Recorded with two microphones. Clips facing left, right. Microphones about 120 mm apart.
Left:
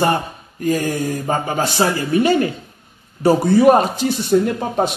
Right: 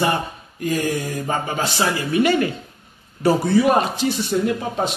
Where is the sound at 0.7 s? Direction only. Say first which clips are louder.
Left 3 dB; 40° left (ahead or behind).